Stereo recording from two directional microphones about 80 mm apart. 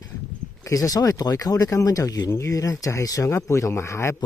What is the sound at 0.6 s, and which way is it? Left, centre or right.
Speech, left.